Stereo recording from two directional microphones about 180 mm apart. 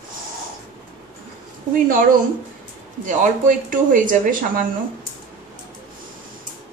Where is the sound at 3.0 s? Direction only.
45° right (ahead or behind).